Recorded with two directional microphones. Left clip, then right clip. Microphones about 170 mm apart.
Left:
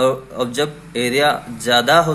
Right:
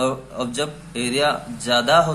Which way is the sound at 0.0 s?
20° left (ahead or behind).